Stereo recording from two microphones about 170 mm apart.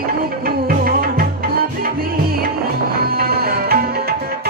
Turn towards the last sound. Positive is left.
turn(degrees=-65)  # may be behind; listen again after turning